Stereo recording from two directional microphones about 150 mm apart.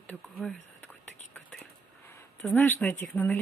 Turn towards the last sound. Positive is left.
turn(degrees=10)  # may be behind; listen again after turning